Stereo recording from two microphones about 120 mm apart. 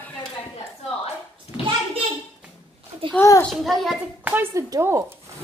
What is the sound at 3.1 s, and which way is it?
Speech, 25° left (ahead or behind).